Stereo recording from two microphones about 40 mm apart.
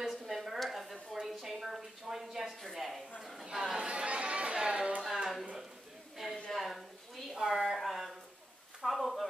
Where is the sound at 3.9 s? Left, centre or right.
Right.